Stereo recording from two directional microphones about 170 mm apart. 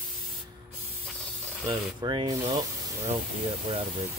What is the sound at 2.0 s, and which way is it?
Speech, 25° right (ahead or behind).